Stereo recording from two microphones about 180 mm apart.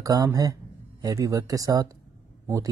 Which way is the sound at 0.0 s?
20° right (ahead or behind).